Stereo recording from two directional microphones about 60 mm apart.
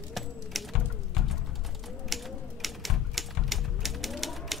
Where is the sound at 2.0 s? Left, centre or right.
Centre.